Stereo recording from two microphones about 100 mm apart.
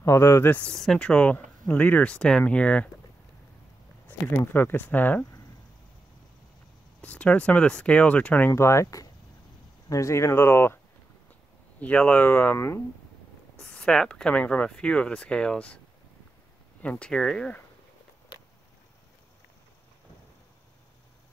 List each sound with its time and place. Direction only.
0.0 s speech: 30° left (ahead or behind)
0.6 s speech: 5° left (ahead or behind)
4.3 s speech: 20° left (ahead or behind)
7.0 s speech: 10° left (ahead or behind)
8.5 s speech: 30° left (ahead or behind)
11.8 s speech: 15° left (ahead or behind)
12.5 s speech: 25° left (ahead or behind)
13.6 s speech: 10° left (ahead or behind)
16.8 s speech: 10° left (ahead or behind)